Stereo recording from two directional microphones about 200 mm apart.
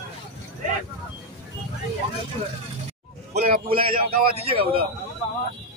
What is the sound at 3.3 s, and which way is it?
Speech, 50° right (ahead or behind).